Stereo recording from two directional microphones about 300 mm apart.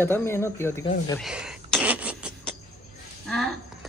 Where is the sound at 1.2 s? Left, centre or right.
Centre.